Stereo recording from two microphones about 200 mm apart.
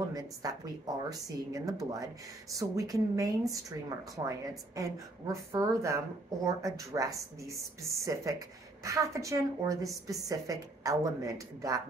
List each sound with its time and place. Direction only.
0.1 s a woman's voice: 20° right (ahead or behind)